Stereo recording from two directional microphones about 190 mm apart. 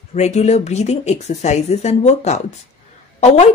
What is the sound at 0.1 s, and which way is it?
Speech, 35° left (ahead or behind).